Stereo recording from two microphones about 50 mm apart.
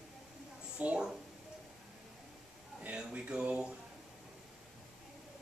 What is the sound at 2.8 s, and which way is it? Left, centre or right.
Speech, right.